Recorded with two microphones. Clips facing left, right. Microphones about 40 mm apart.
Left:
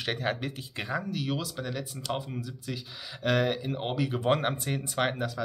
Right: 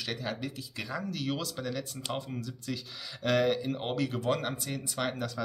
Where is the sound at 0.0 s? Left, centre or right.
Left.